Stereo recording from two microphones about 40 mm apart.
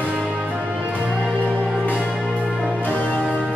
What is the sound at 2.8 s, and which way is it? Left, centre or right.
Music, left.